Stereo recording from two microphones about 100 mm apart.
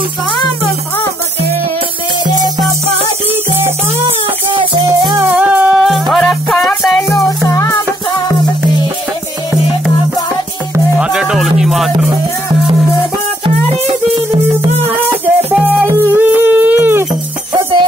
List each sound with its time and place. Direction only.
4.5 s music: 55° right (ahead or behind)
5.3 s music: 15° right (ahead or behind)
5.8 s music: centre (ahead or behind)
7.2 s music: 35° left (ahead or behind)
11.0 s music: 5° right (ahead or behind)
14.1 s music: 55° right (ahead or behind)
15.2 s music: 15° right (ahead or behind)
16.0 s a sound: 20° right (ahead or behind)